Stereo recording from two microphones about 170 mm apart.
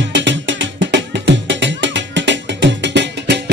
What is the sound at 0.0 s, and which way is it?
Music, 90° right.